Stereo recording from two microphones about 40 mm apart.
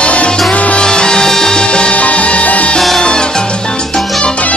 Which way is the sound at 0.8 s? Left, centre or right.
Centre.